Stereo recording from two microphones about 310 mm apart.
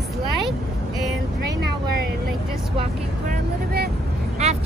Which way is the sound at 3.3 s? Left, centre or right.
Right.